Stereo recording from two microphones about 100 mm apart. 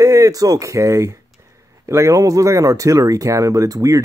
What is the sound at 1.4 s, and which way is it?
Speech, 30° right (ahead or behind).